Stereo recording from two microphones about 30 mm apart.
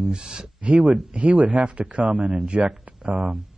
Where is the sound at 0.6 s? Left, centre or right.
Right.